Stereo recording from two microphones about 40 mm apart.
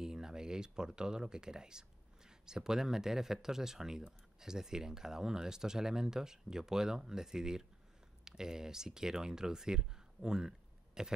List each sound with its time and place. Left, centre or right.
0.0 s speech: centre